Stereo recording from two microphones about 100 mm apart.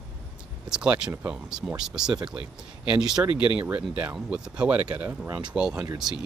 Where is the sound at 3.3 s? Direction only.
55° left (ahead or behind).